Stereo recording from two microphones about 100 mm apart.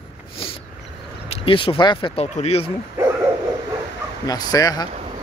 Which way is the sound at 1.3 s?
60° left (ahead or behind).